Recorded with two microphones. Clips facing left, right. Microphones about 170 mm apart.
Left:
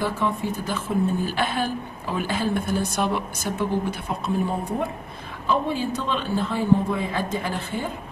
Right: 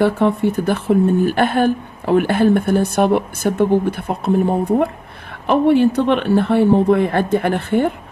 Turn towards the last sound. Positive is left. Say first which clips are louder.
# right 11 dB
turn(degrees=-65)  # may be behind; listen again after turning